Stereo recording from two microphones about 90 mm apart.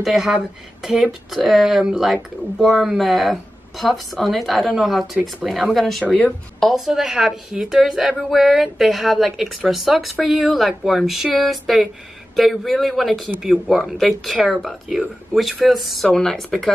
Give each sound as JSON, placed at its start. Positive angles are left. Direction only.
{"t": 0.0, "sound": "speech", "side_deg": -5}
{"t": 6.0, "sound": "speech", "side_deg": 15}
{"t": 6.6, "sound": "speech", "side_deg": 0}